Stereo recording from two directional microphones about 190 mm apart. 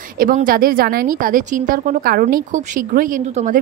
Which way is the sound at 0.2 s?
45° right (ahead or behind).